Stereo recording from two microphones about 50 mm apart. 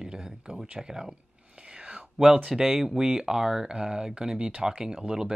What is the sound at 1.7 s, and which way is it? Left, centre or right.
Whispering, centre.